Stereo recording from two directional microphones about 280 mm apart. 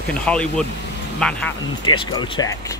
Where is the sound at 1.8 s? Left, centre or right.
Centre.